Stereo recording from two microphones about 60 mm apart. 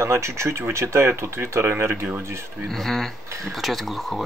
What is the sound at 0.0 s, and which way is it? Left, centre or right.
Speech, right.